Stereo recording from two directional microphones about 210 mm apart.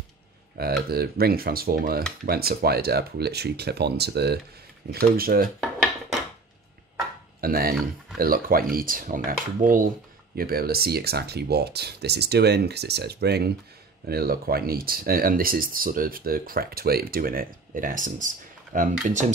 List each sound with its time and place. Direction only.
0.6 s speech: 45° right (ahead or behind)
7.3 s a sound: 45° right (ahead or behind)
8.2 s speech: 45° right (ahead or behind)